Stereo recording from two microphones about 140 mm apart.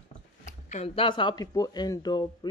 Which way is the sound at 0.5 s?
55° left (ahead or behind).